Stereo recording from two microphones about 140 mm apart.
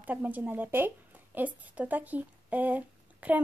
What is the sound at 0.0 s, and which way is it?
Speech, 10° right (ahead or behind).